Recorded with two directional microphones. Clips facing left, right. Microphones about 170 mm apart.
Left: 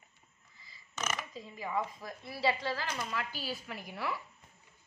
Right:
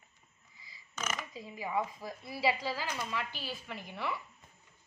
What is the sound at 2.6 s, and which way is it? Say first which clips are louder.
Speech: even; 5° right (ahead or behind).